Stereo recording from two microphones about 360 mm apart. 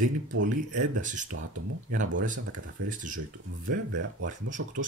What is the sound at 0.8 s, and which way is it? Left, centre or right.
Speech, right.